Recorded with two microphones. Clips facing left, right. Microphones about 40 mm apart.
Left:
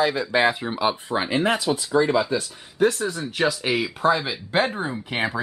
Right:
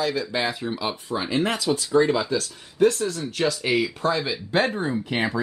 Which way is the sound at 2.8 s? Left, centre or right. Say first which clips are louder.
Right 1 dB; centre.